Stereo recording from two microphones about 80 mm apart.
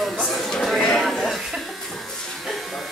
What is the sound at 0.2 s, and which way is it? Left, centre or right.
Chuckle, centre.